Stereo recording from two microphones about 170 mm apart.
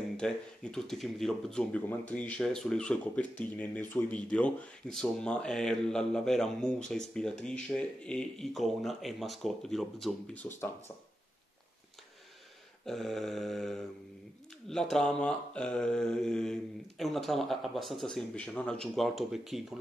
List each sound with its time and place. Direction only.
0.2 s speech: 5° left (ahead or behind)
12.8 s speech: centre (ahead or behind)